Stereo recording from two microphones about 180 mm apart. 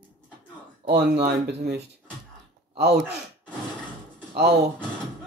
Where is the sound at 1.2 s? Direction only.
65° right (ahead or behind).